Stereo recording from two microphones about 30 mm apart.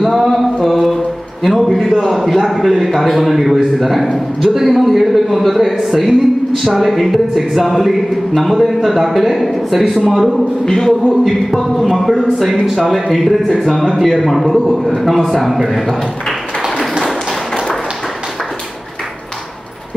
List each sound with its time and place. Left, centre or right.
0.2 s a sound: centre
1.4 s speech: centre
10.6 s music: centre
11.1 s speech: centre